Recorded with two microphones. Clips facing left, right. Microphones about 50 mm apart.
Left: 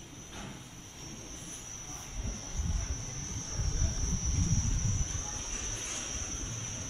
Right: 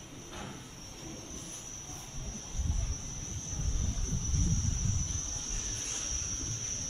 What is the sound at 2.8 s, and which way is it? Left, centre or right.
Vehicle, left.